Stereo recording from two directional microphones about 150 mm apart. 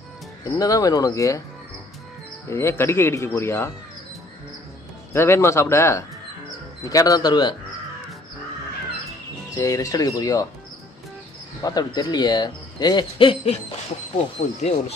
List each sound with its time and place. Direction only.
0.6 s speech: 25° left (ahead or behind)
2.4 s speech: 20° left (ahead or behind)
5.1 s speech: 15° left (ahead or behind)
9.6 s speech: 20° left (ahead or behind)
11.6 s speech: 25° left (ahead or behind)
14.1 s speech: 50° left (ahead or behind)